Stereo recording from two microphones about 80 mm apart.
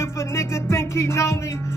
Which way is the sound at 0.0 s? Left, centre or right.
Left.